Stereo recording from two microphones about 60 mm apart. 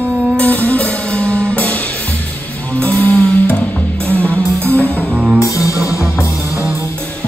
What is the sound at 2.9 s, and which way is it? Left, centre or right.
Music, right.